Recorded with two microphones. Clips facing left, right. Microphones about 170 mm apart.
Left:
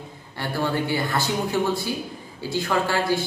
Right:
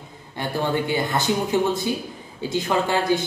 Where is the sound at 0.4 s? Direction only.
20° right (ahead or behind).